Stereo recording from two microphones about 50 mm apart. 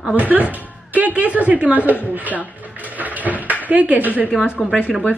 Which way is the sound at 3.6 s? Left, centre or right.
Right.